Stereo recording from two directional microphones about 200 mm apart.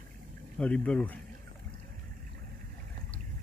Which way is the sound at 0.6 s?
5° left (ahead or behind).